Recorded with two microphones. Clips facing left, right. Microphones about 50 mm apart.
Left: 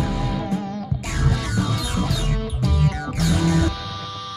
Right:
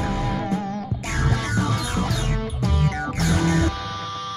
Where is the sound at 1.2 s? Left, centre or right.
Right.